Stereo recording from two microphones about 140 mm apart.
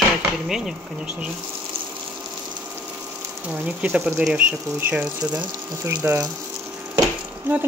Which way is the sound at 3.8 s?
5° right (ahead or behind).